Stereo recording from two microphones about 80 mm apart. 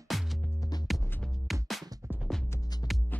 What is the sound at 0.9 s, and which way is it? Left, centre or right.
Music, centre.